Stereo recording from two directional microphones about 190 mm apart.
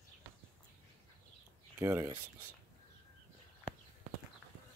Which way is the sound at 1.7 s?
10° right (ahead or behind).